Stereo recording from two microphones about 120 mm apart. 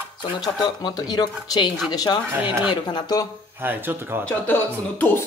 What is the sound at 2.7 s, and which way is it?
Speech, 35° left (ahead or behind).